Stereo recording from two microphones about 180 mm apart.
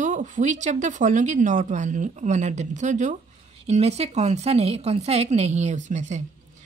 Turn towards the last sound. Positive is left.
turn(degrees=-40)  # may be behind; listen again after turning